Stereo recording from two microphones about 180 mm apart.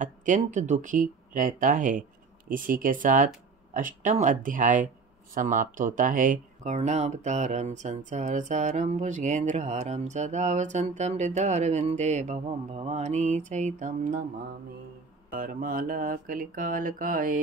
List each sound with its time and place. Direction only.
0.0 s speech: 45° right (ahead or behind)
15.3 s speech: 50° right (ahead or behind)